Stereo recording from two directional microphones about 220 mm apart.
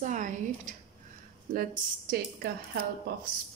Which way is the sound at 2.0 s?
45° right (ahead or behind).